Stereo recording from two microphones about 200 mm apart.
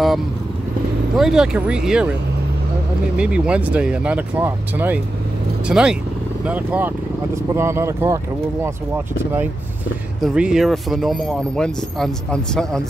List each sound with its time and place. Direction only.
1.1 s speech: centre (ahead or behind)
3.2 s speech: 5° right (ahead or behind)